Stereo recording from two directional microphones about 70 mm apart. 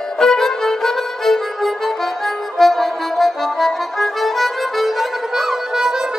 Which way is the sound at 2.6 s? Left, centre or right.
Centre.